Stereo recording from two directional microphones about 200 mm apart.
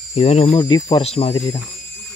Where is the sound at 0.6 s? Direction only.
20° left (ahead or behind).